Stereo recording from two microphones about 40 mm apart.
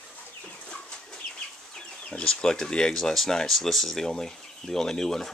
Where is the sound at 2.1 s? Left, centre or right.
Left.